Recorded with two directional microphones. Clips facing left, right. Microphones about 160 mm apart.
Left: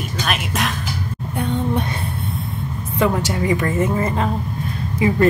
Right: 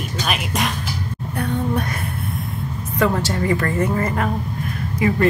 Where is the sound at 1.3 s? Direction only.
20° left (ahead or behind).